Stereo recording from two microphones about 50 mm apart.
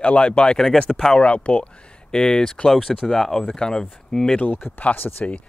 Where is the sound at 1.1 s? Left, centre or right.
Left.